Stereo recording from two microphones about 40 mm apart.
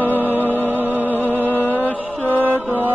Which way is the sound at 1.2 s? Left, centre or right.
Left.